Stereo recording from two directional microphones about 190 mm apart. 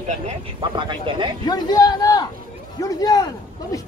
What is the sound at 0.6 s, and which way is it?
Speech, 25° right (ahead or behind).